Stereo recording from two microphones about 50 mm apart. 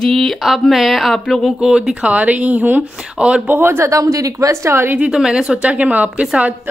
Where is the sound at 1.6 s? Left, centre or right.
Centre; by 3.6 s right.